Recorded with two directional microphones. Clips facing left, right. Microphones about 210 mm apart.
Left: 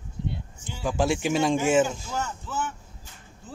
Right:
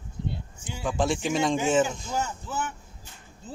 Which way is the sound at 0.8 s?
5° left (ahead or behind).